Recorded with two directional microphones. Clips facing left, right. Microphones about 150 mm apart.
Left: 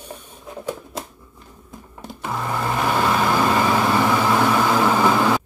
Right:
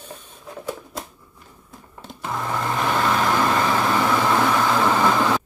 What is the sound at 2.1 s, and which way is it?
Sewing machine, 5° left (ahead or behind).